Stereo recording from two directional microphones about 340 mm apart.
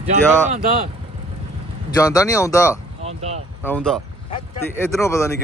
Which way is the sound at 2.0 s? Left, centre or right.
Centre.